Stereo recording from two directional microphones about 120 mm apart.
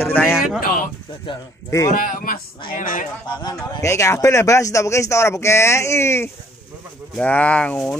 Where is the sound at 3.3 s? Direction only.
40° left (ahead or behind).